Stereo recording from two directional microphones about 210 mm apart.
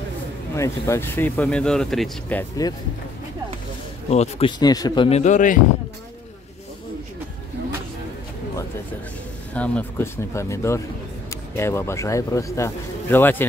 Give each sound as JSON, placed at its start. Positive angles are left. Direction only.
{"t": 0.6, "sound": "speech", "side_deg": 15}
{"t": 4.1, "sound": "speech", "side_deg": 30}
{"t": 5.2, "sound": "speech", "side_deg": 35}
{"t": 9.5, "sound": "speech", "side_deg": 5}